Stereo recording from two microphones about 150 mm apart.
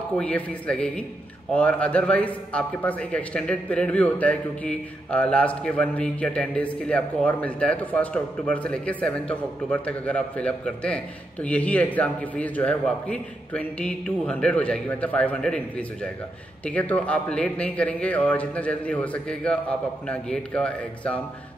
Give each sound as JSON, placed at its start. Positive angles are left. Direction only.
{"t": 0.2, "sound": "a man's voice", "side_deg": 10}